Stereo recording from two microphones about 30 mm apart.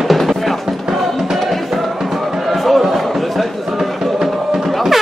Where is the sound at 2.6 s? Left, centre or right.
Centre.